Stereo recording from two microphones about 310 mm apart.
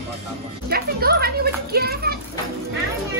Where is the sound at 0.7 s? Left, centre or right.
Right.